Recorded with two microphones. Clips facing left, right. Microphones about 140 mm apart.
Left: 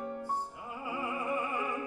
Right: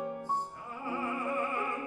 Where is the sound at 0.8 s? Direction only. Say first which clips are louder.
Right 1 dB; 10° left (ahead or behind).